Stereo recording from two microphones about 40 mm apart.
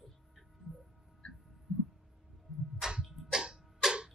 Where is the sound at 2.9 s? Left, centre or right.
Centre.